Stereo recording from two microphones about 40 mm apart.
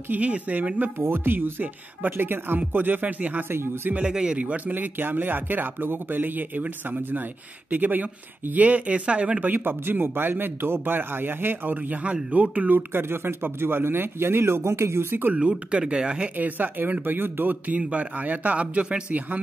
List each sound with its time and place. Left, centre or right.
0.2 s speech: right
0.7 s a man's voice: right
2.7 s speech: right
3.4 s a man's voice: right
4.0 s speech: centre
4.4 s speech: right
4.7 s speech: right
7.0 s a man's voice: right
9.4 s a man's voice: right
12.9 s speech: right
15.9 s speech: right
16.3 s a man's voice: right
17.6 s speech: right